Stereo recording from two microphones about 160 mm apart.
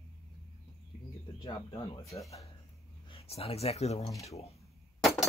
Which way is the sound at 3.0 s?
35° left (ahead or behind).